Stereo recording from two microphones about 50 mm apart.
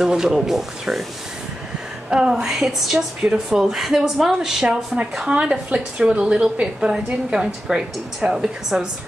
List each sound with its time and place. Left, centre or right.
0.0 s a woman's voice: centre
2.0 s a woman's voice: centre
5.3 s a woman's voice: right